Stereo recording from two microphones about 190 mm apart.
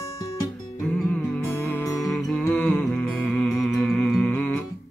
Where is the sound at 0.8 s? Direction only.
Centre (ahead or behind).